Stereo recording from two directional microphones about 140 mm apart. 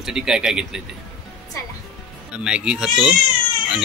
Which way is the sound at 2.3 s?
5° right (ahead or behind).